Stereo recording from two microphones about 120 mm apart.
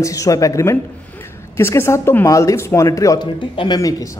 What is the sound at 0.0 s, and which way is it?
A man's voice, 25° left (ahead or behind).